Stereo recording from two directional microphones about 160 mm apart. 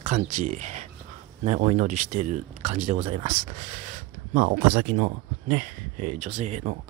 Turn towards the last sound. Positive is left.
turn(degrees=-45)  # may be behind; listen again after turning